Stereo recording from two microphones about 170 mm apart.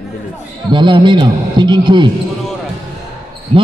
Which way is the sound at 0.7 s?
25° right (ahead or behind).